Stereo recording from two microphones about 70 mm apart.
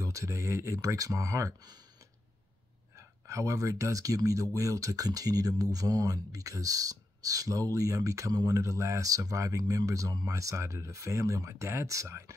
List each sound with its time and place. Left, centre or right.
0.0 s speech: right
3.0 s speech: right